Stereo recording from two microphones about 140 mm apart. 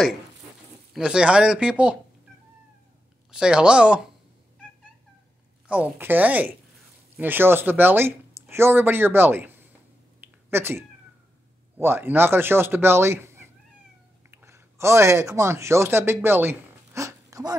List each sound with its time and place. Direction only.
0.9 s speech: 5° right (ahead or behind)
3.3 s speech: 5° right (ahead or behind)
5.7 s speech: 10° right (ahead or behind)
10.2 s a sound: 15° right (ahead or behind)
11.8 s speech: 15° right (ahead or behind)
14.3 s speech: 20° right (ahead or behind)